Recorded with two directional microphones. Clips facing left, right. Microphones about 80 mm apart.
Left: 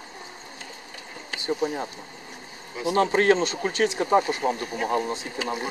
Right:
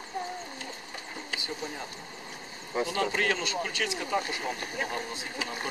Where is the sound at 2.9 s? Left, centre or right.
Left.